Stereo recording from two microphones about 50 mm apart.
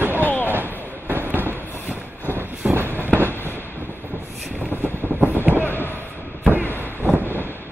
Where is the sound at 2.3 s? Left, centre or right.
Right.